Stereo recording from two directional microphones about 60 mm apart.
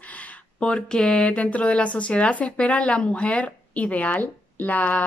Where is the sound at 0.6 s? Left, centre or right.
Centre.